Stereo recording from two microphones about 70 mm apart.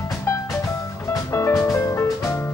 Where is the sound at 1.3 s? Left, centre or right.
Left.